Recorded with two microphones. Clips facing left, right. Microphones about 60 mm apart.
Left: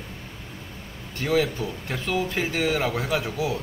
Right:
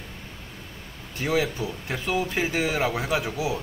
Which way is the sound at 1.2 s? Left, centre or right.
Centre.